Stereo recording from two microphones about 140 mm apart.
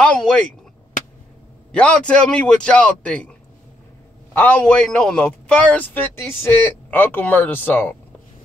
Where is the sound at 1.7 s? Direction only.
10° left (ahead or behind).